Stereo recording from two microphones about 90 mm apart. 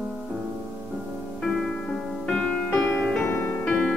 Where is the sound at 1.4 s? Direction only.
Centre (ahead or behind).